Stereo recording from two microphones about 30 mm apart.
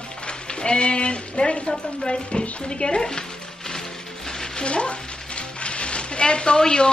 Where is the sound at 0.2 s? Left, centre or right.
Left.